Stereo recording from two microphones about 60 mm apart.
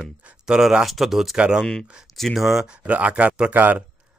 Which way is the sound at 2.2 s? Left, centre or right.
Centre.